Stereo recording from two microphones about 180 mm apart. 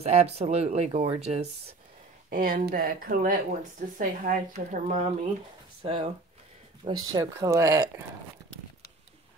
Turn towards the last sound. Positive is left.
turn(degrees=-15)  # may be behind; listen again after turning